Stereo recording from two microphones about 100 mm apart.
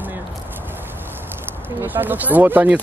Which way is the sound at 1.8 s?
20° right (ahead or behind).